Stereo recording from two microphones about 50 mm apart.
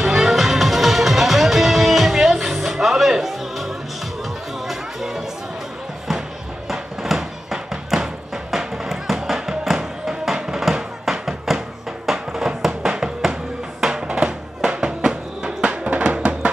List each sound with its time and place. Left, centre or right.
0.0 s music: centre
6.7 s music: centre; by 16.3 s right